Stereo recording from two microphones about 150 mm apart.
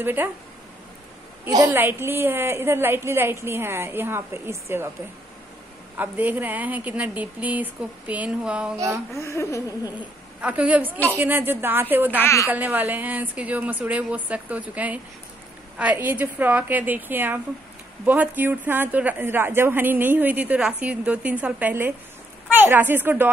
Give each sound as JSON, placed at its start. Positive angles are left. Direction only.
{"t": 0.0, "sound": "speech", "side_deg": -15}
{"t": 1.7, "sound": "speech", "side_deg": -15}
{"t": 5.9, "sound": "speech", "side_deg": -10}
{"t": 8.7, "sound": "speech", "side_deg": -20}
{"t": 9.1, "sound": "speech", "side_deg": 20}
{"t": 10.4, "sound": "speech", "side_deg": -10}
{"t": 12.2, "sound": "a woman's voice", "side_deg": 20}
{"t": 12.4, "sound": "speech", "side_deg": -10}